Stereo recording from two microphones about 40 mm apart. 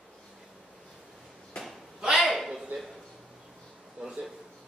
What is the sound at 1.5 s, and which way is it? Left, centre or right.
Cat, left.